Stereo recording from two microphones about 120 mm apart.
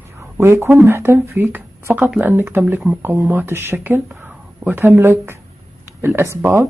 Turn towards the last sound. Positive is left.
turn(degrees=-20)  # may be behind; listen again after turning